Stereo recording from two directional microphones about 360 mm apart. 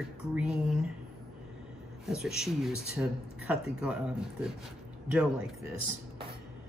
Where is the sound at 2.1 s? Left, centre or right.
Centre.